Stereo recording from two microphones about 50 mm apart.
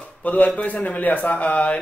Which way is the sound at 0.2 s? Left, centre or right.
Left.